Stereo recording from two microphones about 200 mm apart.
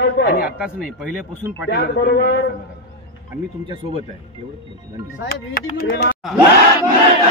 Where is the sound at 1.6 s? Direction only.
55° left (ahead or behind).